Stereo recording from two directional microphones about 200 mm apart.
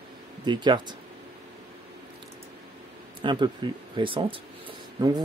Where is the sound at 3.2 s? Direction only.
25° right (ahead or behind).